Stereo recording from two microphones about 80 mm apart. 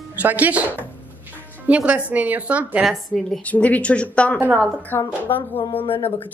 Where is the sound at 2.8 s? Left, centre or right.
Centre.